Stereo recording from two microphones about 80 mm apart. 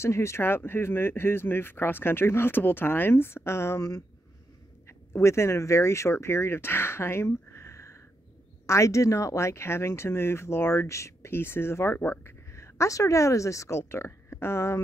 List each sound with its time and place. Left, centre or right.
0.0 s speech: left